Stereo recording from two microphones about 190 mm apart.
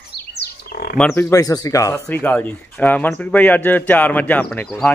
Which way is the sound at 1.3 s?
20° left (ahead or behind).